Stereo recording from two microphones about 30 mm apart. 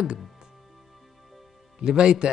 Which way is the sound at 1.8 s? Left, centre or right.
Right.